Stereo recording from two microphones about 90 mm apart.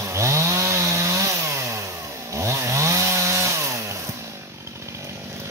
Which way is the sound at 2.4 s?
35° right (ahead or behind).